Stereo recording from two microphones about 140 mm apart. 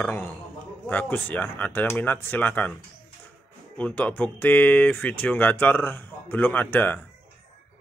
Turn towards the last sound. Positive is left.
turn(degrees=15)  # may be behind; listen again after turning